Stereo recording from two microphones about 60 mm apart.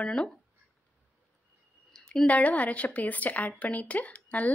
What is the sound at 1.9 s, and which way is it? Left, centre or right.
A woman's voice, centre.